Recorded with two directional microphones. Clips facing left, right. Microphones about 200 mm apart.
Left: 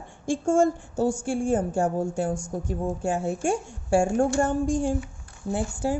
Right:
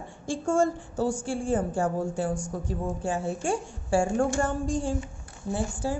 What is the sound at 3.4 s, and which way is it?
Speech, 45° left (ahead or behind).